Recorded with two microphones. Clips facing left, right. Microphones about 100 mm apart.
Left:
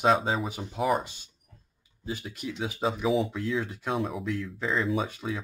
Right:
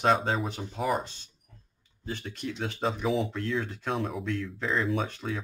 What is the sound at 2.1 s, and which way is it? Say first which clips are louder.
Speech: even; 5° left (ahead or behind).